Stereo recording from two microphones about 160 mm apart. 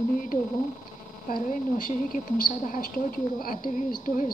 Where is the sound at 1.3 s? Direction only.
60° left (ahead or behind).